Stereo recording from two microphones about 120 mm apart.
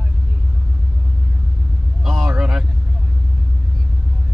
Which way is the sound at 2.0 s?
5° right (ahead or behind).